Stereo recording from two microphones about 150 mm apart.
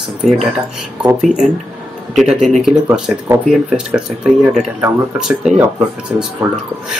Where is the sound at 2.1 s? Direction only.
Centre (ahead or behind).